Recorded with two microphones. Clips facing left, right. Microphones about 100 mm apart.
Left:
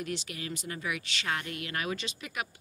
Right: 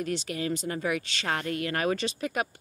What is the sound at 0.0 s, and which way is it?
Speech, 35° right (ahead or behind).